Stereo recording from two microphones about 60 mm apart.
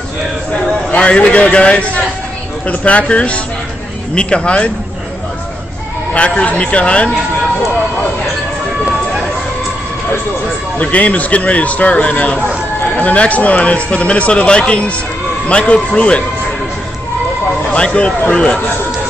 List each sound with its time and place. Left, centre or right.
0.9 s speech: left
6.1 s speech: centre
10.8 s speech: left
17.7 s speech: centre